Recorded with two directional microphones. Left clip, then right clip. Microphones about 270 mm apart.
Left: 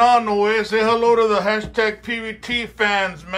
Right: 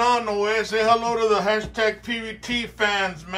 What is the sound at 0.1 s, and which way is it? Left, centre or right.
Speech, centre.